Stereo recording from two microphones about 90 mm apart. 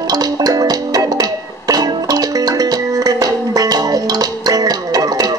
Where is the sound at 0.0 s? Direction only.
45° right (ahead or behind).